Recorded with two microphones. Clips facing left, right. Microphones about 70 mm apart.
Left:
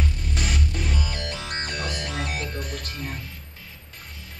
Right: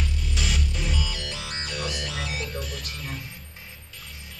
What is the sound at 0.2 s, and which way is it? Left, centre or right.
Music, left.